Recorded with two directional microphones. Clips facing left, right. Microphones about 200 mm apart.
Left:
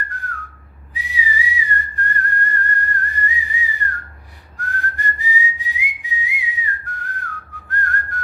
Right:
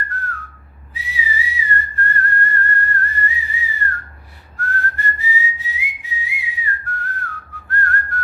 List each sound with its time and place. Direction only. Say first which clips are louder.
0.1 s whistling: right 3 dB; 15° left (ahead or behind)